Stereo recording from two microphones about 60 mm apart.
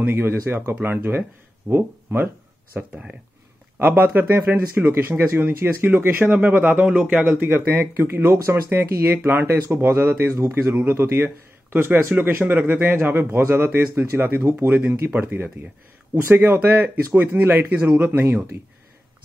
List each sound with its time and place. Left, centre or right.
0.0 s speech: right
2.8 s speech: right
10.7 s speech: right
14.2 s speech: right